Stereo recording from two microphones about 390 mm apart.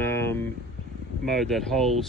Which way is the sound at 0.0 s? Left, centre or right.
Centre.